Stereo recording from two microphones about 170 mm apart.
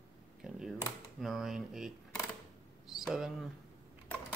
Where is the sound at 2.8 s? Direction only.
Centre (ahead or behind).